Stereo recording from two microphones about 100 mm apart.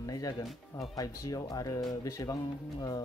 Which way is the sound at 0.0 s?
40° left (ahead or behind).